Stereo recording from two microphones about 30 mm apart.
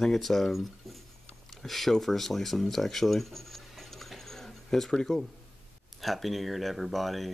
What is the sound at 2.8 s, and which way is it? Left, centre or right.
Writing, centre.